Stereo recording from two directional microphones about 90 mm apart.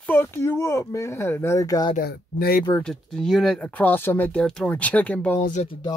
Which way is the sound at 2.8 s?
5° left (ahead or behind).